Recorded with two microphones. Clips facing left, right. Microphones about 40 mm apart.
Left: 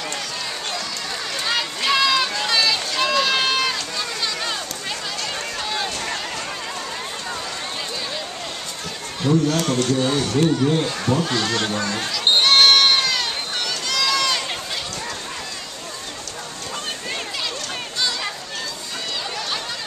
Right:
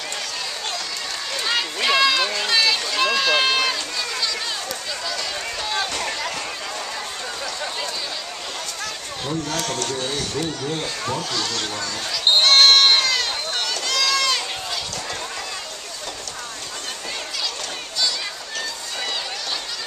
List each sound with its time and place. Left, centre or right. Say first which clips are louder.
1.3 s run: right 1 dB; centre
5.7 s a sound: right 2 dB; centre
9.3 s speech: left 7 dB; centre
11.2 s speech: left 4 dB; left
12.3 s sheep: even; centre